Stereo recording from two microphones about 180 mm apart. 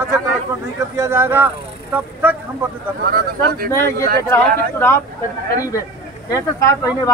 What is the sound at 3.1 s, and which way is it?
Speech, 55° right (ahead or behind).